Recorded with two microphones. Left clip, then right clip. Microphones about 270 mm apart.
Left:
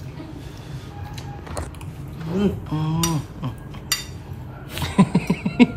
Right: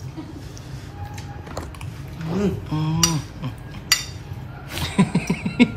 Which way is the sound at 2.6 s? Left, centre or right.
Centre.